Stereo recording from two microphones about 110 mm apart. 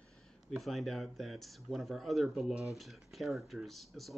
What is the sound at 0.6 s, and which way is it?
Speech, centre (ahead or behind).